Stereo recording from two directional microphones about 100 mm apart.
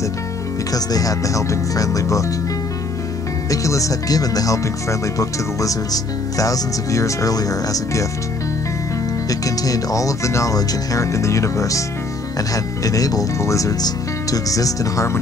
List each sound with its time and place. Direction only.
0.7 s speech: 40° left (ahead or behind)
3.4 s speech: 35° left (ahead or behind)
9.3 s speech: 35° left (ahead or behind)